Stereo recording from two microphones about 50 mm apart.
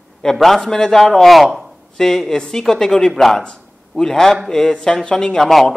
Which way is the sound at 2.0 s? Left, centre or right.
Centre.